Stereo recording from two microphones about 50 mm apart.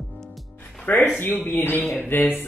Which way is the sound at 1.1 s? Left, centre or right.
Left.